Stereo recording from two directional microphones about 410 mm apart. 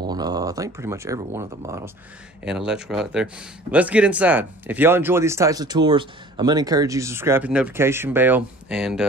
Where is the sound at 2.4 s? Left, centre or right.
Centre.